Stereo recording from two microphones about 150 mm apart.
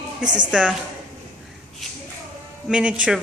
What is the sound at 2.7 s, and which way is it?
Speech, 5° right (ahead or behind).